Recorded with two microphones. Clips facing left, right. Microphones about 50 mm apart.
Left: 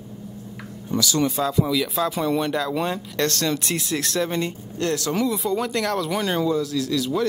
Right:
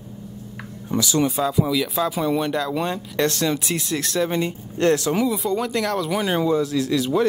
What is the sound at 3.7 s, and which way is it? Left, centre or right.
Speech, centre.